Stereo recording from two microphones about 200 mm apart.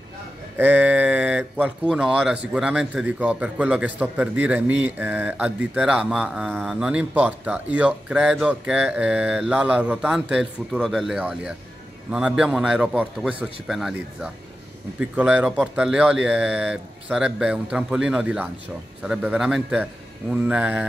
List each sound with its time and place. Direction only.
0.6 s speech: 10° right (ahead or behind)